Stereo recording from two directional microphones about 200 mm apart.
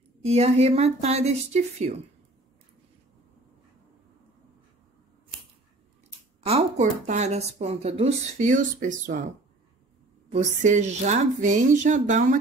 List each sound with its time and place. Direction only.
0.2 s speech: 30° right (ahead or behind)
6.4 s speech: 35° right (ahead or behind)
10.3 s speech: 35° right (ahead or behind)